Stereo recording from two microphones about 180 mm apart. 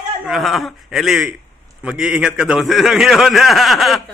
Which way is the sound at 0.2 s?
Centre (ahead or behind).